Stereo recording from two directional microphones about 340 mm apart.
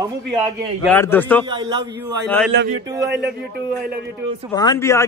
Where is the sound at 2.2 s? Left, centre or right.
Centre.